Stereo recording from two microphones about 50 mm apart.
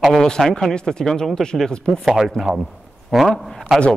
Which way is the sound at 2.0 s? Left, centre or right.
Centre.